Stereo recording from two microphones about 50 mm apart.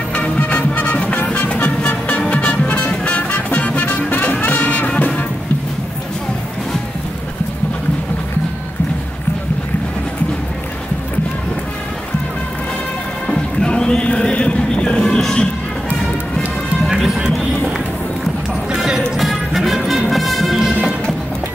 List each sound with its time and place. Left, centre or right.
0.1 s music: left
13.3 s music: centre
14.0 s music: left
16.9 s music: centre
18.8 s music: centre